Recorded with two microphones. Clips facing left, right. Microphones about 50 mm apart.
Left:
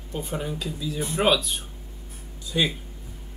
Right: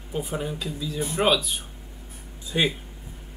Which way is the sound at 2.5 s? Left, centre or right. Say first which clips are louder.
Right 1 dB; centre.